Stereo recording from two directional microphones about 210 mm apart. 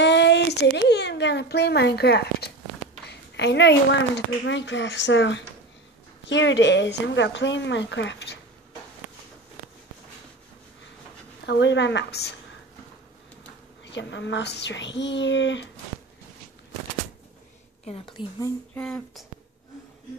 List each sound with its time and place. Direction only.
0.0 s a sound: 55° left (ahead or behind)
4.5 s a woman's voice: 60° left (ahead or behind)
11.4 s a woman's voice: 55° left (ahead or behind)
13.8 s a woman's voice: 55° left (ahead or behind)
17.8 s speech: 25° left (ahead or behind)
18.8 s speech: 5° left (ahead or behind)